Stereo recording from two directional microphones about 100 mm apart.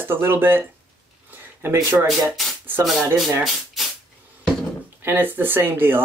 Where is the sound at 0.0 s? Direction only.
20° right (ahead or behind).